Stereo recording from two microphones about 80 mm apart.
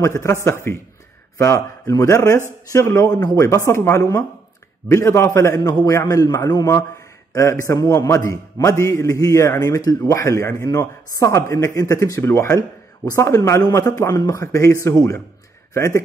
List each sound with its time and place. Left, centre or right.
0.0 s a man's voice: left
9.8 s a man's voice: left
10.1 s a man's voice: left